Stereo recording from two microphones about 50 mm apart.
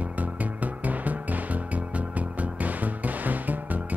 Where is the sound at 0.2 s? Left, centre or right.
Right.